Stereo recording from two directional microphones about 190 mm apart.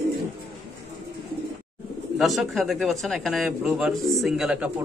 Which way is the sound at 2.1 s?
Centre (ahead or behind).